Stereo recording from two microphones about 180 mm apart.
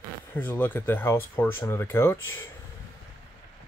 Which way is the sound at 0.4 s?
10° left (ahead or behind).